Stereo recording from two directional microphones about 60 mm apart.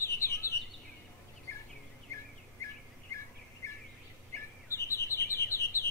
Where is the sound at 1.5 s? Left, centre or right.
Left.